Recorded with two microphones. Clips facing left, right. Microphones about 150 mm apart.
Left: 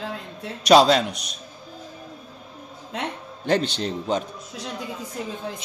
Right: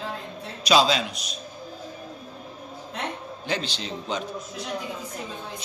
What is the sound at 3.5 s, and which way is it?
Speech, 55° left (ahead or behind).